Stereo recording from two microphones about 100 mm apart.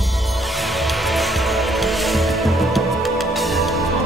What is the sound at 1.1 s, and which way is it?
Music, centre (ahead or behind).